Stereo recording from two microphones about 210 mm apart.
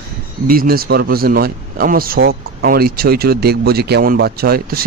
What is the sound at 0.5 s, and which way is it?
Speech, 45° right (ahead or behind).